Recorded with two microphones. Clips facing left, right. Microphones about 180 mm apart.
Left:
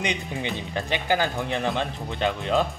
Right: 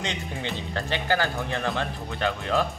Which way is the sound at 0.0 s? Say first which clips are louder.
Left 3 dB; 15° left (ahead or behind).